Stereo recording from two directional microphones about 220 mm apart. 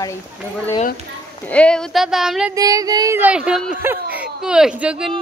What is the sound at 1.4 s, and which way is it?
Speech, 5° left (ahead or behind).